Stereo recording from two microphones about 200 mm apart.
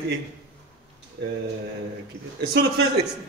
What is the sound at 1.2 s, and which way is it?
Speech, 60° right (ahead or behind).